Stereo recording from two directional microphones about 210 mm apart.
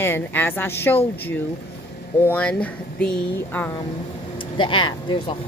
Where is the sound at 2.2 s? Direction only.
5° left (ahead or behind).